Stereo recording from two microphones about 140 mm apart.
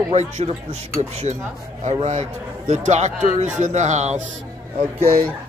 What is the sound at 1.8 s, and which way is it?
A man's voice, 55° right (ahead or behind).